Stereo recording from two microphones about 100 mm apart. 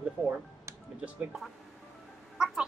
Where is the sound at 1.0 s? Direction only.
10° right (ahead or behind).